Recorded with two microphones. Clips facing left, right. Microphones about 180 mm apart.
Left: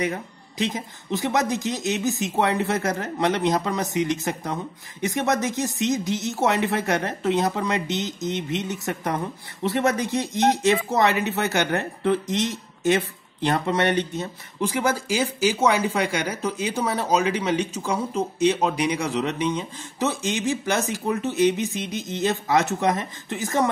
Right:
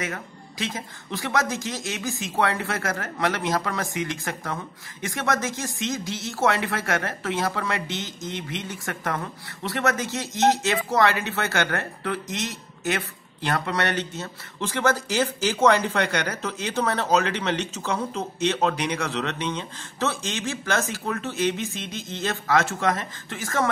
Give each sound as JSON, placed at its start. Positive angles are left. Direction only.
{"t": 0.0, "sound": "speech", "side_deg": 20}